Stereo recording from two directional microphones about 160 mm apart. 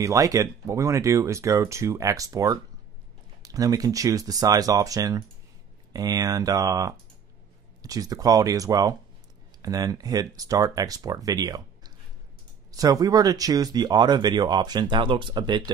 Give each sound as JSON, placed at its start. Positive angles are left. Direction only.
{"t": 0.0, "sound": "speech", "side_deg": -20}